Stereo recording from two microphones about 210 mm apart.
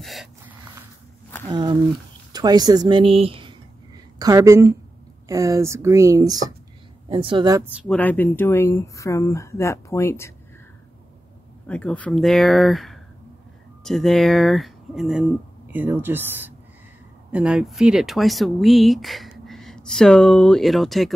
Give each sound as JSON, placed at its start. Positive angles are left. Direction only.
{"t": 0.0, "sound": "a sound", "side_deg": 0}
{"t": 1.5, "sound": "speech", "side_deg": -20}
{"t": 7.9, "sound": "speech", "side_deg": 10}
{"t": 11.6, "sound": "speech", "side_deg": 5}